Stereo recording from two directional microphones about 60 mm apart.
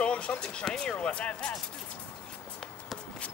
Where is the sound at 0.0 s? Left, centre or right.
Centre.